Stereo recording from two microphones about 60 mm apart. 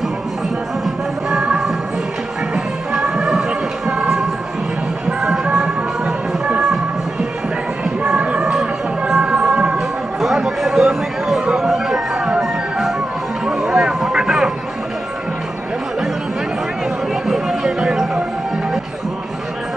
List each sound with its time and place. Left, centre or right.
0.8 s music: centre
5.2 s music: centre
8.4 s music: centre
10.2 s chatter: centre
11.5 s music: centre
13.5 s a sound: centre
17.3 s music: centre